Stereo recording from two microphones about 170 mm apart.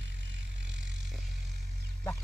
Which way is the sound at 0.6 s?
90° right.